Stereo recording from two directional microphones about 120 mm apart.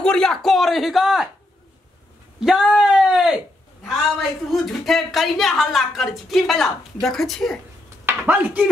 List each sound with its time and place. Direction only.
0.0 s speech: 5° left (ahead or behind)
2.4 s a sound: 5° right (ahead or behind)
4.5 s speech: centre (ahead or behind)
8.0 s speech: 15° right (ahead or behind)